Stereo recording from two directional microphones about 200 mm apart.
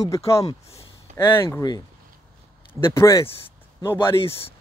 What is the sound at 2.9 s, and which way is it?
Speech, 15° left (ahead or behind).